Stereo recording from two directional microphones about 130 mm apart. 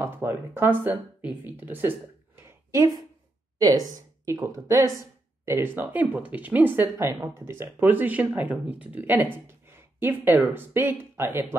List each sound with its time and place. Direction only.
0.0 s speech: 15° right (ahead or behind)